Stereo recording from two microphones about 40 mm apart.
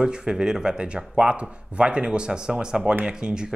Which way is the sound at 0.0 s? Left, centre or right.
Right.